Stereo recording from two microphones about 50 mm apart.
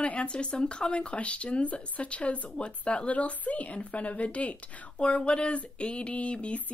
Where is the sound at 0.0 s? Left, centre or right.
Left.